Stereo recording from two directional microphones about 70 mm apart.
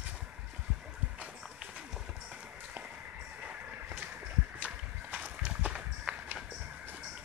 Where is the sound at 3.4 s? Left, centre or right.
Right.